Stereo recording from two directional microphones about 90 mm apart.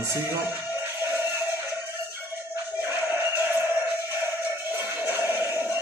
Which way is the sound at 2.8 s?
25° right (ahead or behind).